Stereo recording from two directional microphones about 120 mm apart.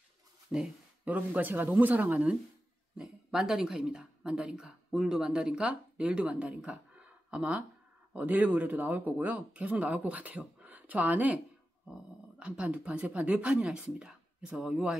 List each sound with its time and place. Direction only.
0.5 s speech: 10° right (ahead or behind)